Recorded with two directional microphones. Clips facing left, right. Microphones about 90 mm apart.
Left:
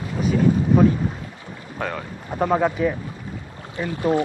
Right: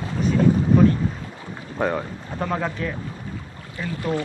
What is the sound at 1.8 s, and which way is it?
Speech, 20° right (ahead or behind).